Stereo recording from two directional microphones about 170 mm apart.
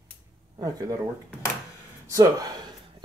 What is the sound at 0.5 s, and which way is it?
Speech, 20° right (ahead or behind).